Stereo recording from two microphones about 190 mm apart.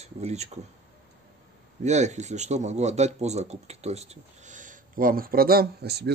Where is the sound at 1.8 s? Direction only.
35° right (ahead or behind); by 6.1 s 60° right (ahead or behind).